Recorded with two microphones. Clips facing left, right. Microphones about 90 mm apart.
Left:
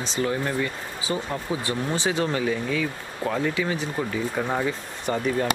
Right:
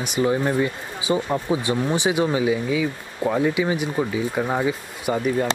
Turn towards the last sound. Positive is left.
turn(degrees=-10)  # may be behind; listen again after turning